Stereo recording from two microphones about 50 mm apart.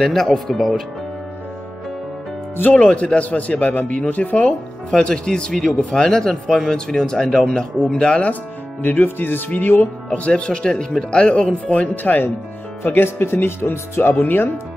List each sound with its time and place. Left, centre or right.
0.0 s speech: centre
2.9 s a man's voice: left
4.5 s speech: centre
8.8 s speech: left
10.1 s a man's voice: left
11.9 s speech: left
12.8 s speech: left